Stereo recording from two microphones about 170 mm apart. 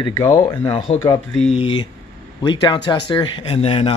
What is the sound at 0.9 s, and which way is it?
Speech, 20° left (ahead or behind).